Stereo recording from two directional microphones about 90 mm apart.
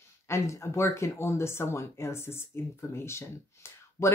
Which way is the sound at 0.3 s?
35° left (ahead or behind).